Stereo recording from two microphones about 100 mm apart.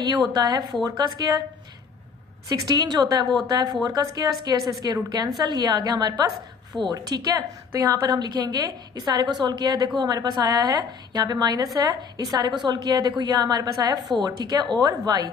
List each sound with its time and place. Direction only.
0.0 s a woman's voice: 40° right (ahead or behind)
2.5 s a woman's voice: 40° right (ahead or behind)
6.7 s a woman's voice: 5° left (ahead or behind)
7.1 s a woman's voice: 45° right (ahead or behind)